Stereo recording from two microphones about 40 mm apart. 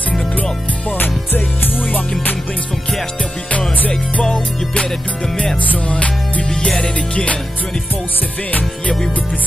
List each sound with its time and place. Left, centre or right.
0.9 s music: left
4.2 s music: left
5.6 s music: left
6.4 s music: centre
8.5 s music: left